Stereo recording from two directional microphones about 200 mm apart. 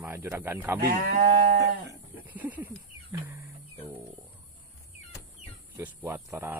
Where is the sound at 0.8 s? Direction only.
45° right (ahead or behind).